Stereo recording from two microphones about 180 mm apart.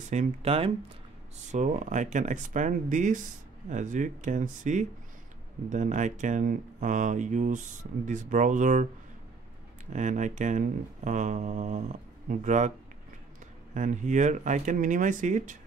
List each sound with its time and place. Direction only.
0.1 s speech: 35° right (ahead or behind)
9.9 s speech: 40° right (ahead or behind)
13.7 s speech: 45° right (ahead or behind)